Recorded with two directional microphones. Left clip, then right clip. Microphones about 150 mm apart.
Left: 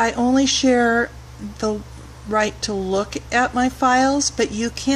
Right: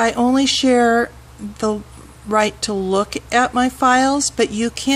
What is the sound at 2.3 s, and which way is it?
Speech, 35° right (ahead or behind).